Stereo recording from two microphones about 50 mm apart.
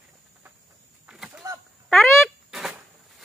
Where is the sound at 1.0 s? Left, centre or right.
Centre.